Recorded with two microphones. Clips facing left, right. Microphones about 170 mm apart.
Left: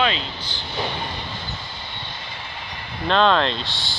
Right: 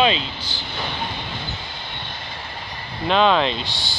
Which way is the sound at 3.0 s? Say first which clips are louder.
Right 1 dB; 5° right (ahead or behind).